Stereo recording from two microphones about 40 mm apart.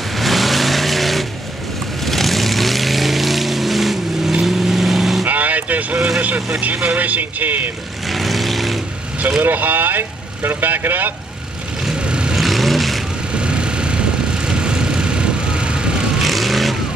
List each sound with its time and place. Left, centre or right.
0.1 s vehicle: centre
5.2 s vehicle: right
5.9 s vehicle: right
7.0 s speech: right
8.1 s vehicle: centre
9.4 s speech: right
11.9 s vehicle: right
12.4 s vehicle: centre
13.3 s vehicle: right
16.2 s vehicle: centre